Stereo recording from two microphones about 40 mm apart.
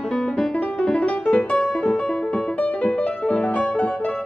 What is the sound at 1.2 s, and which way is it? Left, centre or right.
Music, left.